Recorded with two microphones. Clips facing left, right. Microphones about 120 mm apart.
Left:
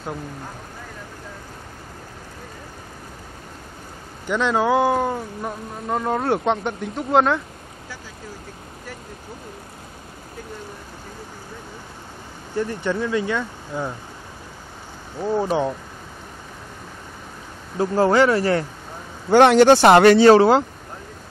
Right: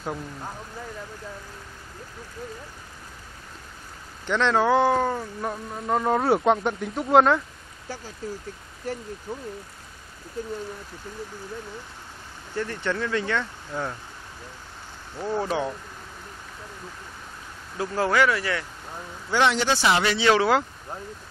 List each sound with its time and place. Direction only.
4.3 s speech: 10° left (ahead or behind)
12.5 s speech: 15° left (ahead or behind)
15.1 s speech: 15° left (ahead or behind)
17.7 s speech: 30° left (ahead or behind)
19.2 s speech: 50° left (ahead or behind); by 20.6 s 35° left (ahead or behind)